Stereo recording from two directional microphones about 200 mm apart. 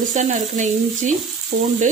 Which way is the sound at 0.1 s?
35° right (ahead or behind).